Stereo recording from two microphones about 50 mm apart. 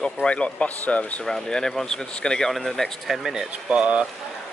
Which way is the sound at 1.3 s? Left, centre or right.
Centre.